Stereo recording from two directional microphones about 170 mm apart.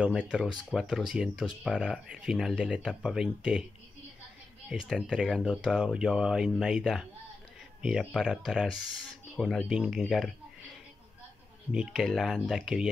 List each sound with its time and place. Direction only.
0.0 s speech: 5° right (ahead or behind)
4.6 s speech: 5° right (ahead or behind)
11.7 s speech: centre (ahead or behind)